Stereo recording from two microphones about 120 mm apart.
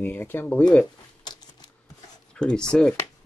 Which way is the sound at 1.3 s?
35° left (ahead or behind).